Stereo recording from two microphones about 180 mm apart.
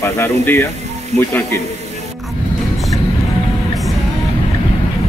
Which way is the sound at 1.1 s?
40° right (ahead or behind).